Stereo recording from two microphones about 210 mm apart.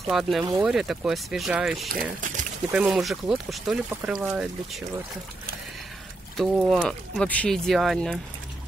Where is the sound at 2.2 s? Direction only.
40° right (ahead or behind).